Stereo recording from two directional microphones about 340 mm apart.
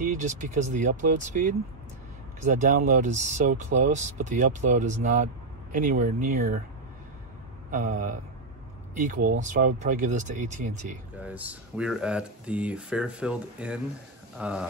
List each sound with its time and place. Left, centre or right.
0.0 s speech: right
7.7 s speech: right
11.1 s speech: centre